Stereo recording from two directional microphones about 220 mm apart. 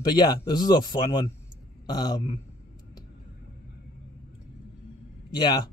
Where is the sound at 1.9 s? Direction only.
20° left (ahead or behind).